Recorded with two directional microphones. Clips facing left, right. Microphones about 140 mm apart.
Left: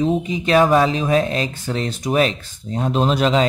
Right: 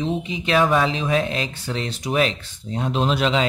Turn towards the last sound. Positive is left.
turn(degrees=40)  # may be behind; listen again after turning